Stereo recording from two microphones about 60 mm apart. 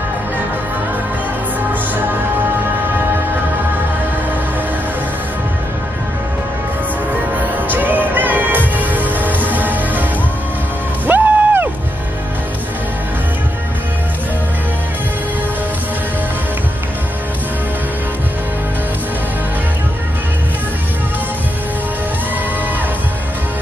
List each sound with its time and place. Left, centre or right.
7.3 s music: right
11.1 s music: right